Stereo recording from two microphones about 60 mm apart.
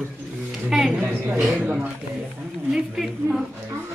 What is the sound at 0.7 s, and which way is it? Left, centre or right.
Speech, centre.